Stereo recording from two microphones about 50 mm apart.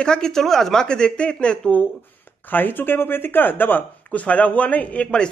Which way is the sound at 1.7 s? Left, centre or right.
Left.